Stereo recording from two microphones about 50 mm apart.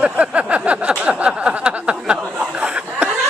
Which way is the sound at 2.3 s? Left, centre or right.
Right.